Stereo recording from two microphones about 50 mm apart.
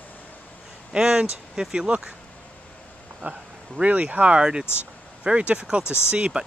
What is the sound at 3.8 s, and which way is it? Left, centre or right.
Speech, right.